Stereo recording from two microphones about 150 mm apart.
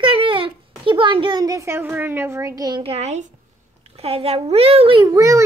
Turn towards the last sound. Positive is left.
turn(degrees=-20)  # may be behind; listen again after turning